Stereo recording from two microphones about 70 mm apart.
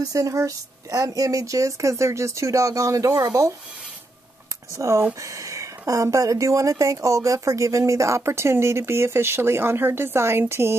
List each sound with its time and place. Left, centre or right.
0.0 s speech: right
4.7 s speech: right